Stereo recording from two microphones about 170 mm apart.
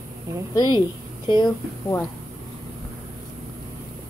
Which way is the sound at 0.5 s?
25° left (ahead or behind).